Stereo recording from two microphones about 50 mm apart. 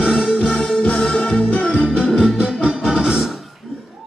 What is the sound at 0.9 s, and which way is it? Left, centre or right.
Music, left.